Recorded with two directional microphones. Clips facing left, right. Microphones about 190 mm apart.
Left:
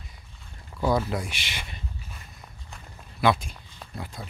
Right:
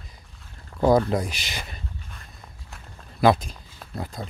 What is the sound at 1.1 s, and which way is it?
Speech, 40° right (ahead or behind).